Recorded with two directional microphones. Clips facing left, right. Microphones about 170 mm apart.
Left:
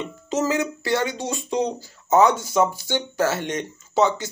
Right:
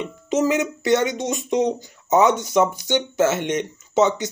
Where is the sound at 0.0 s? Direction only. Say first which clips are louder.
Right 3 dB; 20° right (ahead or behind).